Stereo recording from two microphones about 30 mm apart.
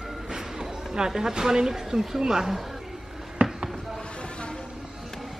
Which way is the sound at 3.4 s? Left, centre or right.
Right.